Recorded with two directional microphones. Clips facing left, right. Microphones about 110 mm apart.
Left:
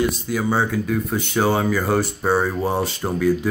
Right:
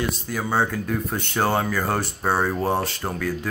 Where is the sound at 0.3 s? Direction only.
5° left (ahead or behind).